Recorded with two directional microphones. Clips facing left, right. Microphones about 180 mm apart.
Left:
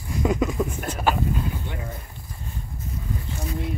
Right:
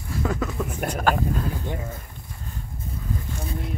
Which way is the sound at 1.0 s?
10° left (ahead or behind).